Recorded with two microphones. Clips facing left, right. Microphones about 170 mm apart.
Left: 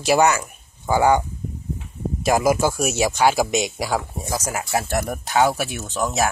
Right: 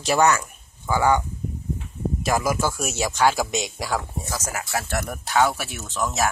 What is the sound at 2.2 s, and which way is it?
Speech, 15° left (ahead or behind).